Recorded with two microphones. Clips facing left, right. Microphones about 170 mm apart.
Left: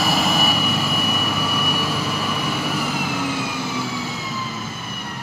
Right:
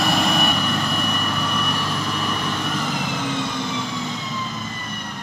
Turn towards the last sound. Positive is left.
turn(degrees=5)  # may be behind; listen again after turning